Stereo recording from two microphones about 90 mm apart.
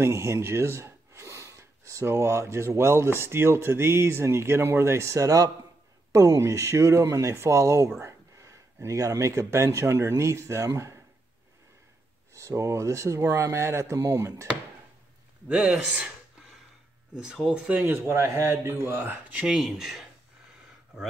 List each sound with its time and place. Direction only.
0.0 s speech: 30° right (ahead or behind)
8.0 s a sound: 35° right (ahead or behind)
8.8 s speech: 40° right (ahead or behind)
12.4 s speech: 35° right (ahead or behind)
15.4 s speech: 15° right (ahead or behind)
17.2 s speech: 10° right (ahead or behind)
17.7 s speech: 25° right (ahead or behind); by 20.1 s centre (ahead or behind)